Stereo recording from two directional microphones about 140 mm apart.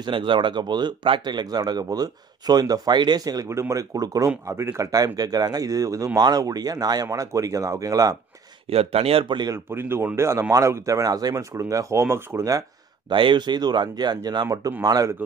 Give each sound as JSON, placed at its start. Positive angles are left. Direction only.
{"t": 0.0, "sound": "speech", "side_deg": -35}
{"t": 8.6, "sound": "speech", "side_deg": -45}
{"t": 9.7, "sound": "speech", "side_deg": -15}
{"t": 13.1, "sound": "speech", "side_deg": -35}